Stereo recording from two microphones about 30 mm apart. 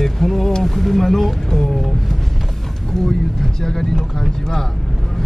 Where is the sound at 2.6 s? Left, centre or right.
Centre.